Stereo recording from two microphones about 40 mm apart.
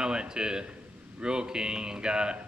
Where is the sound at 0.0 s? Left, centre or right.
Centre.